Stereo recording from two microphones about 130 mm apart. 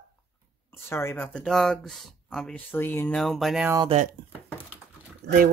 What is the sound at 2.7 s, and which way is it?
Speech, 20° left (ahead or behind).